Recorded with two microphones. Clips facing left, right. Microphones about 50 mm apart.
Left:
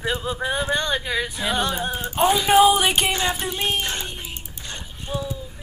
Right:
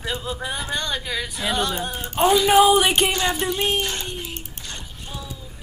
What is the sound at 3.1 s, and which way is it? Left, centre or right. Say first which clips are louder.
Speech: right 1 dB; centre.